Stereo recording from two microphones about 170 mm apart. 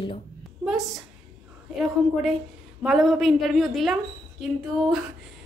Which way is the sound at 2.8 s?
Centre (ahead or behind).